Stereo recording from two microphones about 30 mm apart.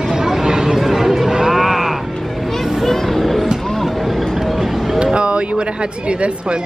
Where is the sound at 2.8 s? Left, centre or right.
Centre.